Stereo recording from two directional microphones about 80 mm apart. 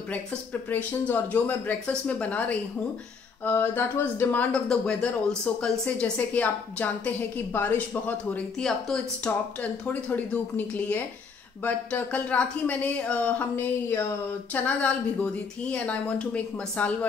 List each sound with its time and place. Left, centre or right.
0.1 s speech: centre
4.6 s speech: centre
8.5 s speech: centre